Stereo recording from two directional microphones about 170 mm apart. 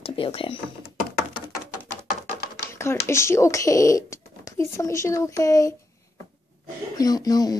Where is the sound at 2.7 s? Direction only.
15° left (ahead or behind).